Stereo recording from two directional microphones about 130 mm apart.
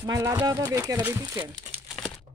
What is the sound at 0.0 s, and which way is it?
Speech, 25° right (ahead or behind).